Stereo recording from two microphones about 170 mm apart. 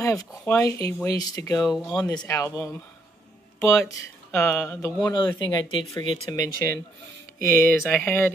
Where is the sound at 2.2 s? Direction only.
20° left (ahead or behind).